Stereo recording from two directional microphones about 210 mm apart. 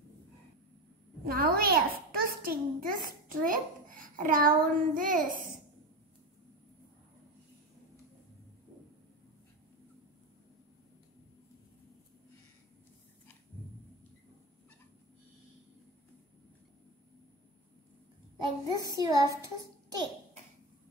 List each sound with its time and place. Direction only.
1.2 s a child's voice: 45° right (ahead or behind)
18.4 s a child's voice: 15° right (ahead or behind)